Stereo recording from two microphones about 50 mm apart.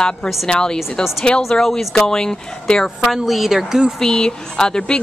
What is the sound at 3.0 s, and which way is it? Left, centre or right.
Speech, centre.